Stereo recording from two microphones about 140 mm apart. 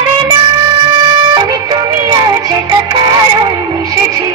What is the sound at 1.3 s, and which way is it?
Music, 30° right (ahead or behind).